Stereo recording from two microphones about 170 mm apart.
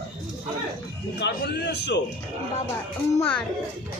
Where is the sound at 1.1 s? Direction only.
90° left.